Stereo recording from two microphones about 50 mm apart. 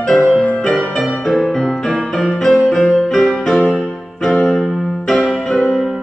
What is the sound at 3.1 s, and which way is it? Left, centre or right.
Music, centre.